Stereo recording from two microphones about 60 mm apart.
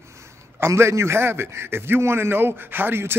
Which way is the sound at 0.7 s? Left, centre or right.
Right.